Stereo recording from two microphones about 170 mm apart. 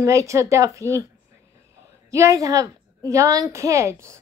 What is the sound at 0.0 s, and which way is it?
A woman's voice, 20° right (ahead or behind).